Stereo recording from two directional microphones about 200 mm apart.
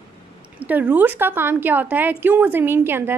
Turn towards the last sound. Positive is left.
turn(degrees=-10)  # may be behind; listen again after turning